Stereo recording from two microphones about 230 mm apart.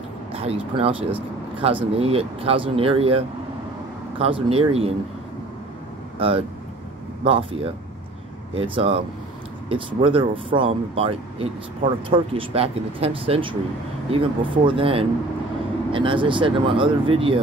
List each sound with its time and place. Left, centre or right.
0.3 s speech: right
6.1 s speech: right